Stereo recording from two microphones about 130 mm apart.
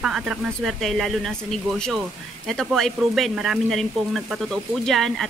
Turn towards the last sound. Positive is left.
turn(degrees=0)  # may be behind; listen again after turning